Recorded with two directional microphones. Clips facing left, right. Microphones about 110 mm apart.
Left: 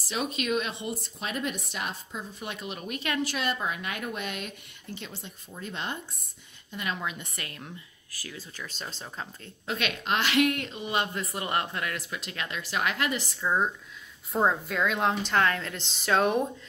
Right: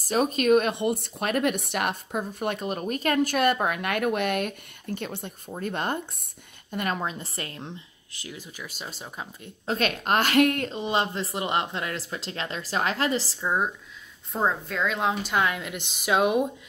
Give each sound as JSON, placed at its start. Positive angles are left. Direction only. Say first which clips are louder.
{"t": 0.0, "sound": "a woman's voice", "louder": "right 8 dB", "side_deg": -45}
{"t": 7.0, "sound": "speech", "louder": "right 4 dB", "side_deg": -35}
{"t": 9.7, "sound": "a woman's voice", "louder": "right 5 dB", "side_deg": -40}
{"t": 10.7, "sound": "speech", "louder": "right 4 dB", "side_deg": -30}
{"t": 13.4, "sound": "a woman's voice", "louder": "left 2 dB", "side_deg": -10}
{"t": 14.3, "sound": "a woman's voice", "louder": "left 1 dB", "side_deg": 0}